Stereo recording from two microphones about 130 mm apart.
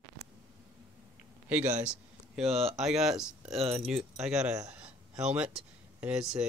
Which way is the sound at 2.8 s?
5° right (ahead or behind).